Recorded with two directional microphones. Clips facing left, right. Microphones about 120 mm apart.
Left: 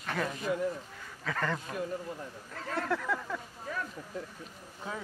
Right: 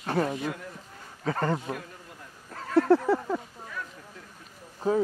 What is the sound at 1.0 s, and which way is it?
Speech, 35° right (ahead or behind).